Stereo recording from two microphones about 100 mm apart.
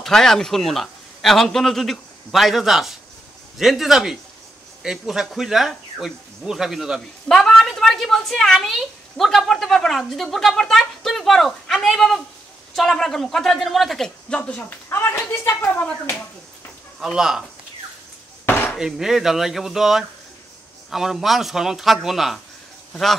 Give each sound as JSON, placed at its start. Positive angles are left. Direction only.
{"t": 0.0, "sound": "a man's voice", "side_deg": 5}
{"t": 17.0, "sound": "a man's voice", "side_deg": -5}
{"t": 18.4, "sound": "chopping", "side_deg": 20}
{"t": 18.8, "sound": "a man's voice", "side_deg": -5}